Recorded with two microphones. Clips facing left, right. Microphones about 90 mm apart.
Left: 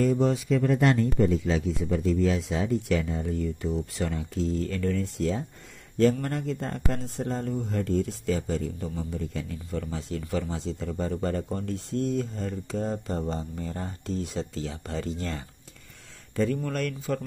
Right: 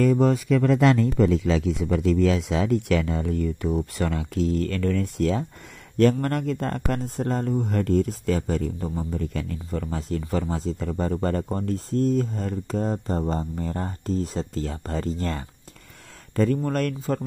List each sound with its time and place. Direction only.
0.0 s speech: 50° right (ahead or behind)
0.5 s speech: 90° right; by 11.4 s 50° right (ahead or behind)
11.4 s speech: 40° right (ahead or behind)